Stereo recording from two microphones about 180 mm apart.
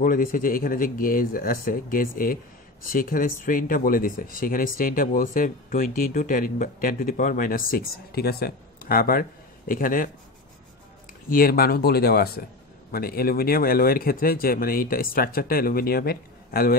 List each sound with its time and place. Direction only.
0.0 s speech: 50° left (ahead or behind)
11.2 s speech: 55° left (ahead or behind)